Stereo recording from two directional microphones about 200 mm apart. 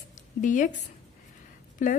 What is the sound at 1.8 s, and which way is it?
Speech, 40° left (ahead or behind).